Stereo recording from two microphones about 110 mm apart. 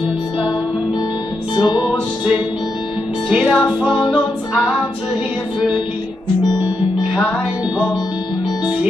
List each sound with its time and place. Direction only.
1.6 s music: 40° left (ahead or behind)
3.3 s music: 5° right (ahead or behind)